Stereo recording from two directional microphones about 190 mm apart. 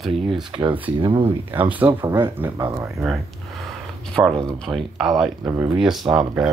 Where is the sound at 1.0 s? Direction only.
25° right (ahead or behind).